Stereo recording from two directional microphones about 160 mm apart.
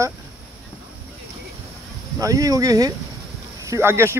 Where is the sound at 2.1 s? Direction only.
20° right (ahead or behind).